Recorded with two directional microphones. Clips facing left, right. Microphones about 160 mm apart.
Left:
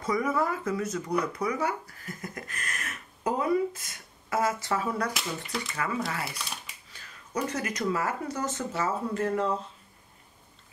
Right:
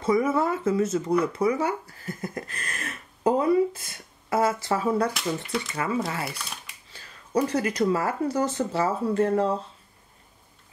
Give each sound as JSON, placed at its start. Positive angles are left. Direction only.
{"t": 0.0, "sound": "speech", "side_deg": -25}
{"t": 5.1, "sound": "speech", "side_deg": 0}
{"t": 5.8, "sound": "speech", "side_deg": -25}
{"t": 6.2, "sound": "speech", "side_deg": 0}
{"t": 6.9, "sound": "speech", "side_deg": -30}